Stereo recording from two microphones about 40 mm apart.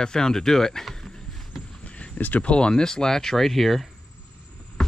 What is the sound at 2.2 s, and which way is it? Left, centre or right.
Speech, left.